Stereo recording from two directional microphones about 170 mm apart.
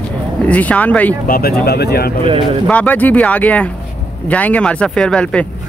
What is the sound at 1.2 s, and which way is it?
Speech, 60° left (ahead or behind).